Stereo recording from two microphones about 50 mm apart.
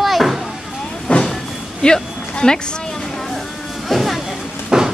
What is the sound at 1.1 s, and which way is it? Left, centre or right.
Vehicle, left.